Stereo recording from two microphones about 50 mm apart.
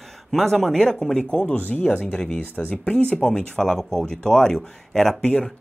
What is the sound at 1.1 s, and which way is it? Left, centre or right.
Speech, left.